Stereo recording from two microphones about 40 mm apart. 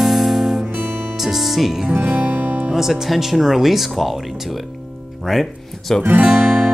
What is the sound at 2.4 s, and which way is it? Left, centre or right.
Music, right.